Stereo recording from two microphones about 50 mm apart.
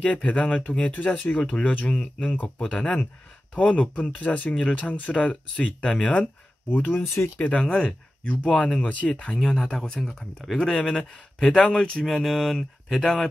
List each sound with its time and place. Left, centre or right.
0.0 s speech: left
6.7 s speech: left
7.3 s speech: left
7.6 s speech: centre
9.4 s speech: centre